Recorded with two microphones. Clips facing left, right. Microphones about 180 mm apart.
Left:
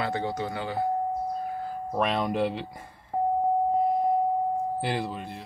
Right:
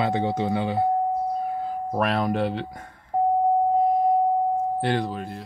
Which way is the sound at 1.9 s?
Centre (ahead or behind).